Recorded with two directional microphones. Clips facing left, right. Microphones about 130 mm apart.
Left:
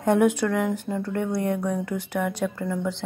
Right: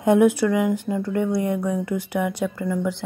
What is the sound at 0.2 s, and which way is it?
A woman's voice, 5° right (ahead or behind).